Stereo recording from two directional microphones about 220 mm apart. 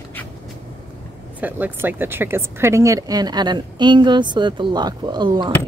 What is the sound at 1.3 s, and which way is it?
Speech, 10° right (ahead or behind).